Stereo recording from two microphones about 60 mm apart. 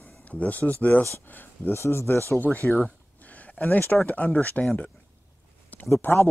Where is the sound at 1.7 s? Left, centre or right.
Left.